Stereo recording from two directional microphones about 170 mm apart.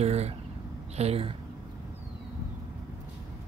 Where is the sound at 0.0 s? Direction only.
40° right (ahead or behind).